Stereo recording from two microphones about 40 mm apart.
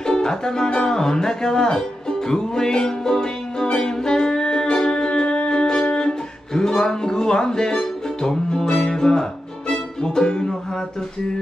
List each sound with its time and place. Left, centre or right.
0.0 s music: centre